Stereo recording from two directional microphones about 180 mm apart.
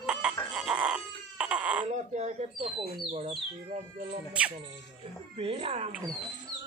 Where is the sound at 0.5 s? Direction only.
5° right (ahead or behind).